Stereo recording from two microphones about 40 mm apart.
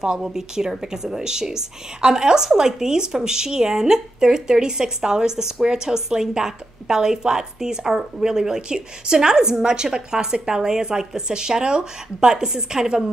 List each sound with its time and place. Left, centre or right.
0.0 s speech: centre